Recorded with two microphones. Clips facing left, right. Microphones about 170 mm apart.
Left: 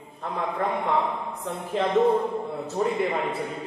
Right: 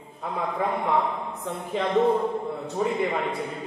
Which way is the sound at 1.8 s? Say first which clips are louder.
Left 1 dB; centre (ahead or behind).